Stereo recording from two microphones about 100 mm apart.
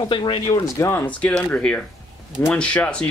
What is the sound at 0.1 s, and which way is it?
Speech, 55° left (ahead or behind).